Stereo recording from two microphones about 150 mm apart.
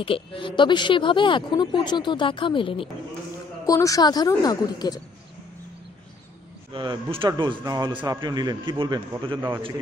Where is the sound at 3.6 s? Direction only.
25° left (ahead or behind).